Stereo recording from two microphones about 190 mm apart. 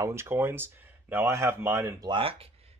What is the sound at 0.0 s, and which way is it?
Speech, 15° right (ahead or behind).